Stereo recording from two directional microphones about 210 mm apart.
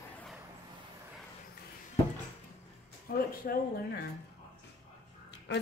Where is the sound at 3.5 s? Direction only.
45° left (ahead or behind).